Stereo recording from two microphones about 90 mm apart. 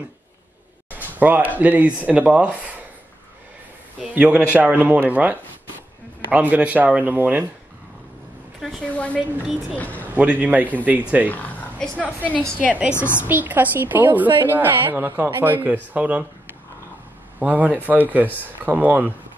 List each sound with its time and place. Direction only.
0.8 s speech: 20° right (ahead or behind)
4.1 s a man's voice: 15° right (ahead or behind)
8.5 s a sound: 5° right (ahead or behind)
8.9 s a sound: 15° left (ahead or behind)
9.8 s speech: 20° left (ahead or behind)
10.1 s a man's voice: 15° right (ahead or behind)
11.2 s a woman's voice: 20° left (ahead or behind)
12.5 s a man's voice: 15° right (ahead or behind)
12.9 s a woman's voice: 25° left (ahead or behind)
13.3 s a woman's voice: 20° right (ahead or behind)
17.4 s a woman's voice: 15° right (ahead or behind)